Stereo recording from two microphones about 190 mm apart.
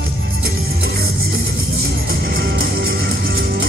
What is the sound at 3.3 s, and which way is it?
Music, 90° right.